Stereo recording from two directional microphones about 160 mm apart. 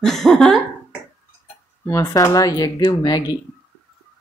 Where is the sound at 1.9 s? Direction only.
15° left (ahead or behind).